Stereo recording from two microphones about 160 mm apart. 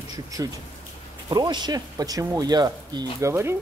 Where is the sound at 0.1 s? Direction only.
20° right (ahead or behind).